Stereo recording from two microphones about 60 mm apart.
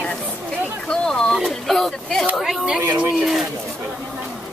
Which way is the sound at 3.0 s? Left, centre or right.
Centre.